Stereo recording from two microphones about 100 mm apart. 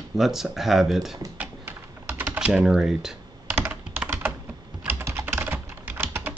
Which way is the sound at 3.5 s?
20° right (ahead or behind).